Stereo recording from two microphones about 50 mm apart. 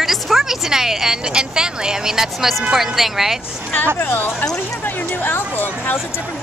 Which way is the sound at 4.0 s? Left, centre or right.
Left.